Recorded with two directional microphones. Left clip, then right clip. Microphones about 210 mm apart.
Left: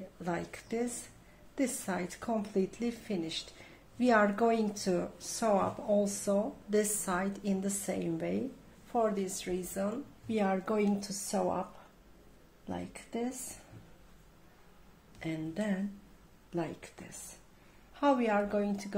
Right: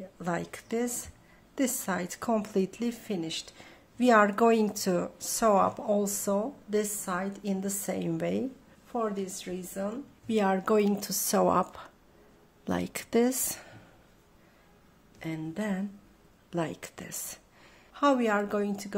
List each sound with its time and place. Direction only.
0.2 s a woman's voice: 20° right (ahead or behind)
6.7 s a woman's voice: 10° right (ahead or behind)
8.9 s a woman's voice: 5° right (ahead or behind)
10.2 s a woman's voice: 25° right (ahead or behind)
12.6 s a woman's voice: 40° right (ahead or behind)
15.1 s a woman's voice: 15° right (ahead or behind)